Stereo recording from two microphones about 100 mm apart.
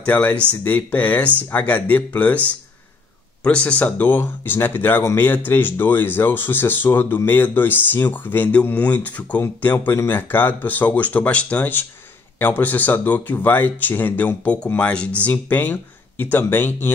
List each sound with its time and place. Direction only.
0.0 s speech: 15° left (ahead or behind)